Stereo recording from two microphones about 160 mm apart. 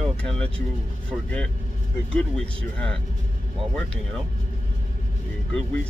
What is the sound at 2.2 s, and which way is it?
Speech, 5° left (ahead or behind).